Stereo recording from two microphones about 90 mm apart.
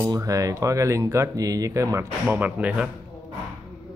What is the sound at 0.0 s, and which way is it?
Speech, 40° right (ahead or behind).